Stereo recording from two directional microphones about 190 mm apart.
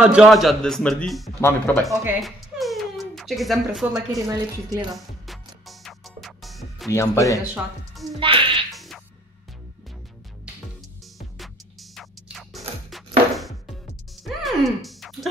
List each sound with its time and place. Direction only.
0.0 s speech: 5° right (ahead or behind)
2.2 s a sound: centre (ahead or behind)
4.3 s a woman's voice: 20° right (ahead or behind)
4.9 s music: centre (ahead or behind)
6.9 s speech: 15° left (ahead or behind)
7.5 s speech: centre (ahead or behind)
8.2 s a woman's voice: 25° right (ahead or behind)
8.7 s music: centre (ahead or behind)
11.1 s music: centre (ahead or behind)
14.2 s a sound: centre (ahead or behind)